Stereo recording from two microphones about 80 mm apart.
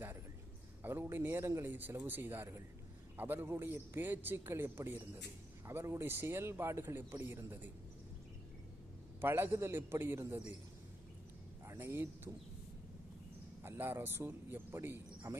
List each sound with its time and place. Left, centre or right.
1.1 s a man's voice: right
9.2 s a man's voice: right
11.6 s speech: right
13.6 s a man's voice: right